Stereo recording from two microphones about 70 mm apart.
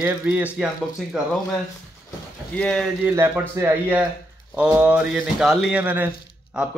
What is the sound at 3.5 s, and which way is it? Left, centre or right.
Speech, right.